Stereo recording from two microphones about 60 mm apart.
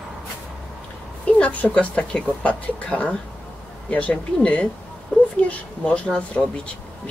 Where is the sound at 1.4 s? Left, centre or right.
Left.